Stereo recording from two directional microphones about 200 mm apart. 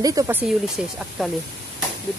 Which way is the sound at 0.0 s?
15° right (ahead or behind).